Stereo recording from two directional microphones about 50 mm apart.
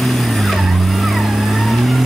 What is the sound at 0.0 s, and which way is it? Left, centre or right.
Vehicle, centre.